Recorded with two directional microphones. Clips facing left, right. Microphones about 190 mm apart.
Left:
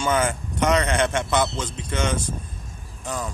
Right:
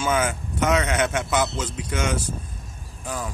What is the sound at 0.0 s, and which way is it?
A man's voice, 5° right (ahead or behind).